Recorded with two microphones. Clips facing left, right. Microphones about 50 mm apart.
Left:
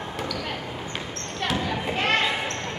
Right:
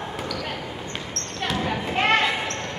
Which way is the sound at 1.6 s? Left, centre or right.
Right.